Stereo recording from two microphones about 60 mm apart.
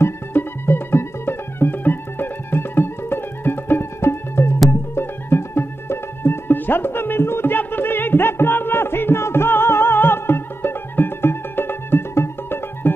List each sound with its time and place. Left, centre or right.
0.0 s music: left